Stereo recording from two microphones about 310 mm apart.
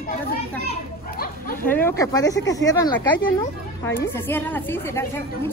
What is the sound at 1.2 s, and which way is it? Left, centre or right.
Speech, left.